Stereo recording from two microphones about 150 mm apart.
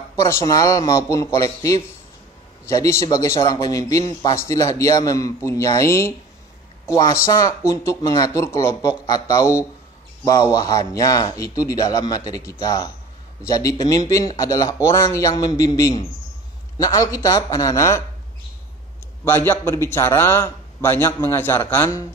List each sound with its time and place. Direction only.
0.1 s speech: 20° left (ahead or behind)
19.2 s a man's voice: 15° left (ahead or behind)